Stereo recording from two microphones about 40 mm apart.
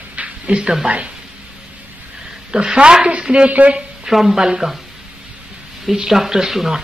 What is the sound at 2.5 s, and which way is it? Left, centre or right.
A woman's voice, right.